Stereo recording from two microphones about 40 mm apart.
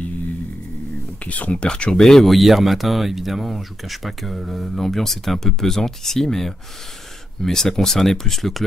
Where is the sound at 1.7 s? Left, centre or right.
Left.